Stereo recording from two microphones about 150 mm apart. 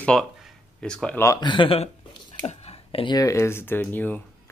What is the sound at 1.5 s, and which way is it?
Speech, 35° left (ahead or behind).